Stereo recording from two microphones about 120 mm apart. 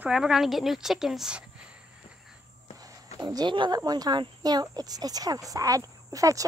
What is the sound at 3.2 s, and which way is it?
Speech, 40° right (ahead or behind).